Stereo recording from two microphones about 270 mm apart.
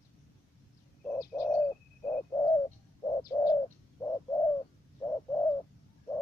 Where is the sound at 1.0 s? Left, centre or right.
Centre.